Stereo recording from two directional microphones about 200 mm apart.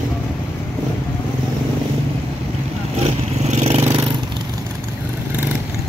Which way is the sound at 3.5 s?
30° right (ahead or behind).